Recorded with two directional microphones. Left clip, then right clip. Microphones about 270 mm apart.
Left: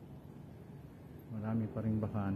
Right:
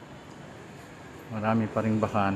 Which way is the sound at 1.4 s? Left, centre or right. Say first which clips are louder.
Right 13 dB; right.